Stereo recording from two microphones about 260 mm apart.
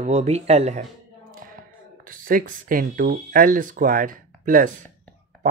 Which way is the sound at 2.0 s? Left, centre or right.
Right.